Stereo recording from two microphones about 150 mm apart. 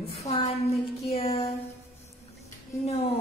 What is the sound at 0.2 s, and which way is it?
Speech, 45° left (ahead or behind).